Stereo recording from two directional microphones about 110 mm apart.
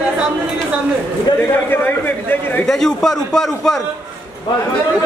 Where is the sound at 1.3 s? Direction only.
40° left (ahead or behind).